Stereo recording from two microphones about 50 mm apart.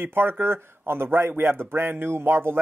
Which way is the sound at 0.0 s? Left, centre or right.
Right.